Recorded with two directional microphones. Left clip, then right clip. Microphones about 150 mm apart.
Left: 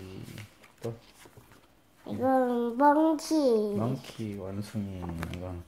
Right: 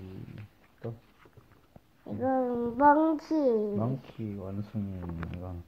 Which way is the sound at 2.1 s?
5° left (ahead or behind).